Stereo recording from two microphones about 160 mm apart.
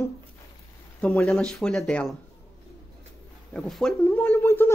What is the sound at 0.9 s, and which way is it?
Speech, 5° left (ahead or behind).